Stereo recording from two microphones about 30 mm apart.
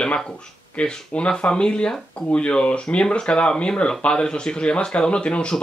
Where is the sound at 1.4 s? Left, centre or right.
Left.